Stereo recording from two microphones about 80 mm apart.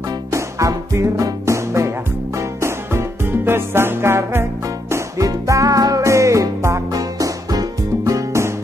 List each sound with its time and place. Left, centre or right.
0.3 s music: right
4.9 s music: right